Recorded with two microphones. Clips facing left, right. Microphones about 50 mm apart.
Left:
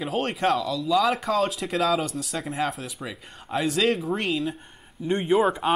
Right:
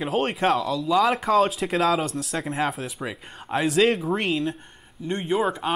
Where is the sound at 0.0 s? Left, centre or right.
Centre.